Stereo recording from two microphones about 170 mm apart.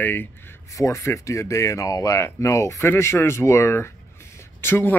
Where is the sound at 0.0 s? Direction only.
10° left (ahead or behind).